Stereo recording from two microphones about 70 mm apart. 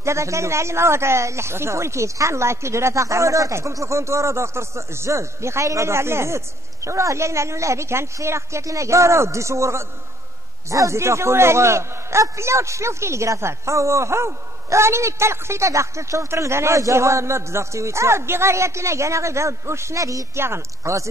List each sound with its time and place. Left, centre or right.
0.0 s a man's voice: right
20.3 s speech: right